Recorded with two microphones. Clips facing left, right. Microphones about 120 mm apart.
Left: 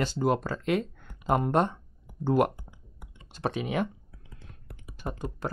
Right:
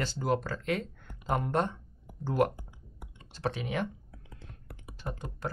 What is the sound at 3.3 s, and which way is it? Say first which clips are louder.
Speech: left 3 dB; 15° left (ahead or behind).